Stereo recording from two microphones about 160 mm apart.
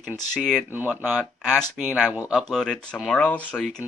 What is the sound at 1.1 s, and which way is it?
Speech, 5° left (ahead or behind).